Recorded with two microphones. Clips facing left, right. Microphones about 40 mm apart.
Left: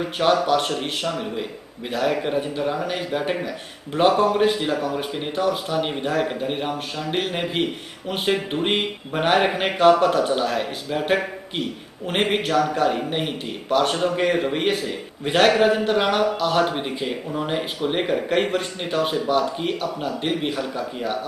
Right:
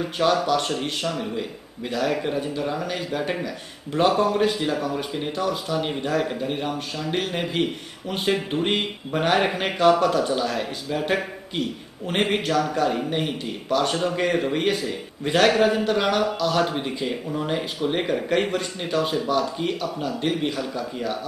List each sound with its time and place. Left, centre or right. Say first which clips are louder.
0.5 s a man's voice: left 2 dB; centre
13.9 s a man's voice: left 2 dB; centre